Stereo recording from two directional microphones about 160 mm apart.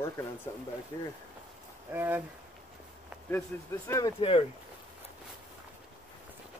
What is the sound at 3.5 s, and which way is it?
Speech, 10° left (ahead or behind).